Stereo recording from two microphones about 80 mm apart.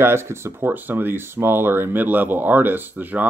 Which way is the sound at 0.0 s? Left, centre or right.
Right.